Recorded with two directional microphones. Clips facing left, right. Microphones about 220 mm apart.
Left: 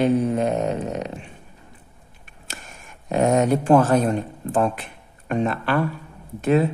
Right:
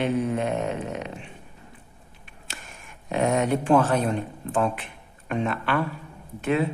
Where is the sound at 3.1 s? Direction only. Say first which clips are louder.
Left 4 dB; 40° left (ahead or behind).